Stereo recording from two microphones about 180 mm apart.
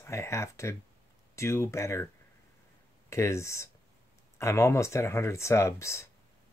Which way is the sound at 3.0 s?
15° left (ahead or behind).